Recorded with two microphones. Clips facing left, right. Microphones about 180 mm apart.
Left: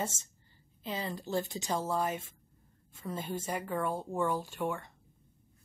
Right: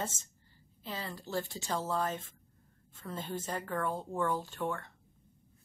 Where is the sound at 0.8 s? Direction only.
15° left (ahead or behind).